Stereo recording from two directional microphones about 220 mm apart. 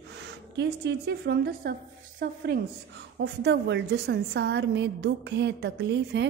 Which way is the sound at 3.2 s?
50° right (ahead or behind).